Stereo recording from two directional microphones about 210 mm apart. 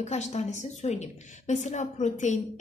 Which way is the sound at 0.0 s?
30° left (ahead or behind).